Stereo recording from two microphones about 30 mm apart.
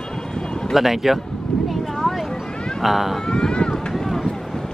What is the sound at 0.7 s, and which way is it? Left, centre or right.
Speech, centre.